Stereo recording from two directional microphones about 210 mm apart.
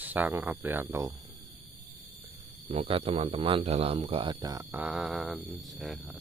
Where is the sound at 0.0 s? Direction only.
10° right (ahead or behind).